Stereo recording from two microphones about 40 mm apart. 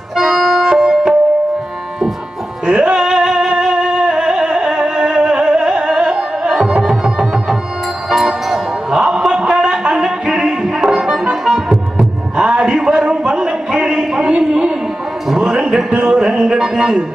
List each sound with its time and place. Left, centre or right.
0.1 s music: centre
2.6 s music: centre
12.4 s a sound: right
15.4 s music: centre